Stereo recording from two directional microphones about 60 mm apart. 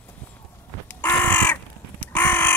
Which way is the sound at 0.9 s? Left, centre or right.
Left.